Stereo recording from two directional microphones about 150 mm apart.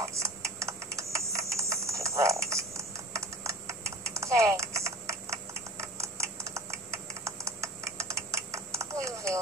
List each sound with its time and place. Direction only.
0.0 s typing: 20° right (ahead or behind)